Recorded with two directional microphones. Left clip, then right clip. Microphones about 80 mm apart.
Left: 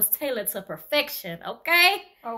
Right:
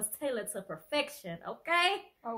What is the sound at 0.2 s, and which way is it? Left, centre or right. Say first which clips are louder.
A child's voice: left 6 dB; right.